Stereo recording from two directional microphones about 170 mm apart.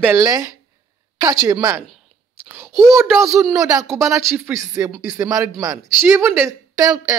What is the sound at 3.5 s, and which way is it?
Speech, 20° right (ahead or behind).